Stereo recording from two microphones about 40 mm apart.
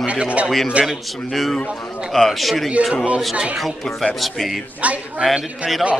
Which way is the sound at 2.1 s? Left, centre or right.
Centre.